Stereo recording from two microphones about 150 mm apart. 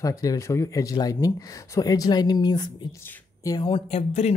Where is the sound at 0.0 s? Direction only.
20° left (ahead or behind).